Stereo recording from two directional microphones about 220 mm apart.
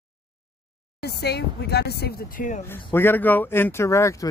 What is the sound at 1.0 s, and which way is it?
Speech, 50° left (ahead or behind).